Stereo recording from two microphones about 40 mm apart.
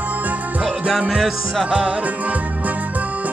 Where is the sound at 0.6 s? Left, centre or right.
Centre.